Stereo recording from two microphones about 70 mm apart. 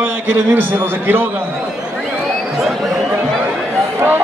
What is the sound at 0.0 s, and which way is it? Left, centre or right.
A man's voice, right.